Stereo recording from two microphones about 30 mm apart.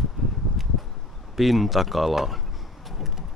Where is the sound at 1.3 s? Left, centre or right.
Centre.